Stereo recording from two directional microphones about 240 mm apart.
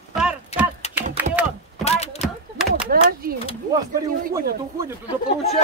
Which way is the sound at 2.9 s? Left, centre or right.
Right.